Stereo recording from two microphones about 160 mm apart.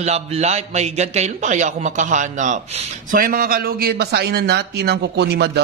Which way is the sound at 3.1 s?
65° right (ahead or behind).